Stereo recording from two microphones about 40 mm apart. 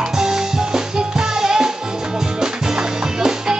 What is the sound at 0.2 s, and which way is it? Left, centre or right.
Music, centre.